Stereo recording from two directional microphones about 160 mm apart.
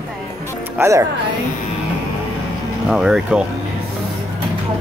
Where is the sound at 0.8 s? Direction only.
20° right (ahead or behind).